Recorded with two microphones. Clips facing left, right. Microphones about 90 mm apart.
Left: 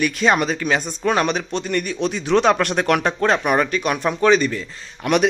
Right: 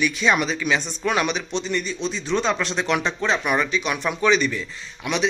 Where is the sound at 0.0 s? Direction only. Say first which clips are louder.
Left 3 dB; 45° left (ahead or behind).